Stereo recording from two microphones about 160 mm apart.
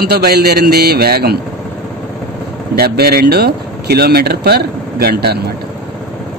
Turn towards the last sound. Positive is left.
turn(degrees=-90)